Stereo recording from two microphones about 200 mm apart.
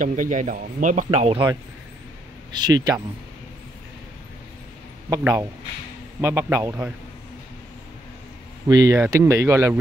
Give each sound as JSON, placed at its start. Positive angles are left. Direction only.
{"t": 0.0, "sound": "speech", "side_deg": -40}
{"t": 5.1, "sound": "speech", "side_deg": -10}
{"t": 8.6, "sound": "speech", "side_deg": -20}